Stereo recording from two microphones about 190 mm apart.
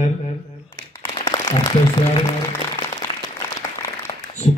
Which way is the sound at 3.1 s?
25° left (ahead or behind).